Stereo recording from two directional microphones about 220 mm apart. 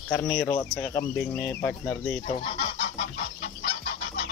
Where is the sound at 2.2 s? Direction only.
30° left (ahead or behind).